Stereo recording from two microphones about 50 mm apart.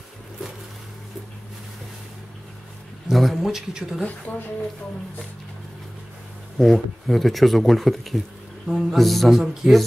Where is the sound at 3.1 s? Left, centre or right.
Centre.